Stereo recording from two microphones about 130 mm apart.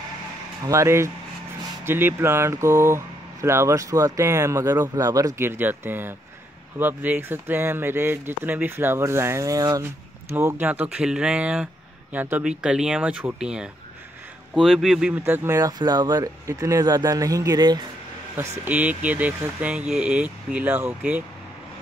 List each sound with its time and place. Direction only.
0.7 s speech: 20° right (ahead or behind)
10.3 s speech: 15° right (ahead or behind); by 17.8 s 35° right (ahead or behind)
18.7 s speech: 10° right (ahead or behind)